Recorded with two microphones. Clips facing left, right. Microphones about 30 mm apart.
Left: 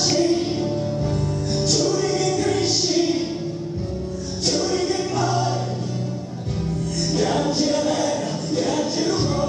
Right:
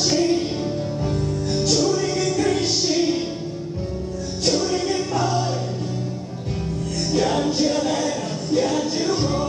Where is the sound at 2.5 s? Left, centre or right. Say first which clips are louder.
Even; right.